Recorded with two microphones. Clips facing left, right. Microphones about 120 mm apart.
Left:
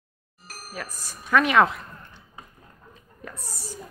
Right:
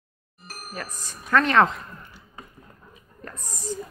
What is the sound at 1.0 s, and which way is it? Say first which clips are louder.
Speech: even; 10° left (ahead or behind).